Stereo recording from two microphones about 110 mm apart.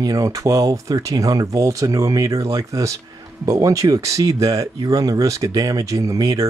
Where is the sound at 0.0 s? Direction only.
30° right (ahead or behind).